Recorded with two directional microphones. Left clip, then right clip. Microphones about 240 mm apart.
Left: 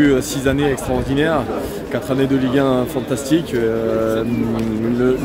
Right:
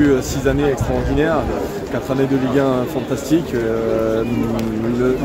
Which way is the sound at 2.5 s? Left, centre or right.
Centre.